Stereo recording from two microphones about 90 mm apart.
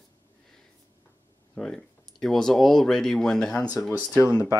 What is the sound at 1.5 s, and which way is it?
Speech, 5° left (ahead or behind).